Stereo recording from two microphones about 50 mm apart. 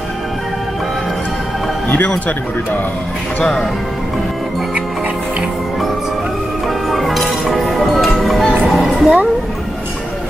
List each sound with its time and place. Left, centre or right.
1.9 s speech: left
3.3 s speech: centre
6.9 s music: centre